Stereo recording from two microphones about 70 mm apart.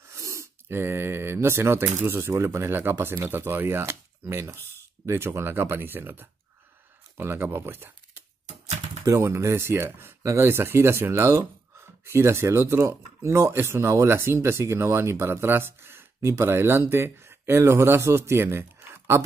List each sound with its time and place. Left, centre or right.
0.1 s speech: right
9.0 s speech: right